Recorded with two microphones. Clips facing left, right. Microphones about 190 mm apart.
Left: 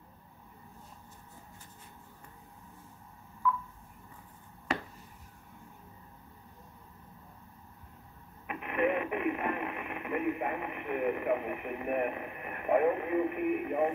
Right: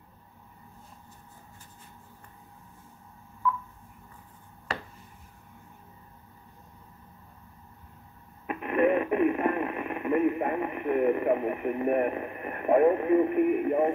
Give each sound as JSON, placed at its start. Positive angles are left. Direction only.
{"t": 8.5, "sound": "radio", "side_deg": -40}